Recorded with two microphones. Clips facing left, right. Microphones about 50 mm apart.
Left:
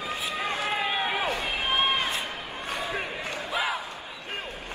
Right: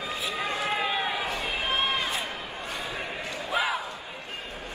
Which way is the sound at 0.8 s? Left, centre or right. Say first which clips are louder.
Even; left.